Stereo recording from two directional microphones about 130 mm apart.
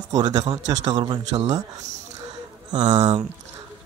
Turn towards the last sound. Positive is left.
turn(degrees=-35)  # may be behind; listen again after turning